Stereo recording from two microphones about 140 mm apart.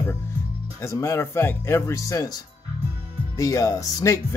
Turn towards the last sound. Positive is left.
turn(degrees=25)  # may be behind; listen again after turning